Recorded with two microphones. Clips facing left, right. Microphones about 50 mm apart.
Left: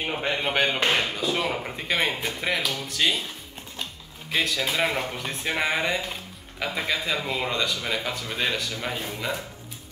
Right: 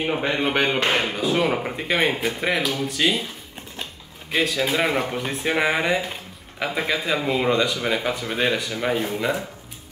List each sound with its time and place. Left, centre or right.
0.0 s speech: centre
4.3 s speech: centre